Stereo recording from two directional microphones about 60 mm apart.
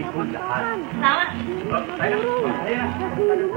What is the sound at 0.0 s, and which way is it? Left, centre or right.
Speech, centre.